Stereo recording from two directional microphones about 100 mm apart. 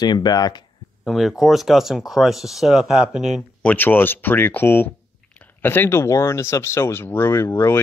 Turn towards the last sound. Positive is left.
turn(degrees=25)  # may be behind; listen again after turning